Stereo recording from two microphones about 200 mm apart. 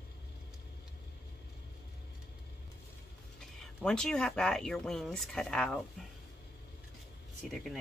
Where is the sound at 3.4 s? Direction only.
5° left (ahead or behind).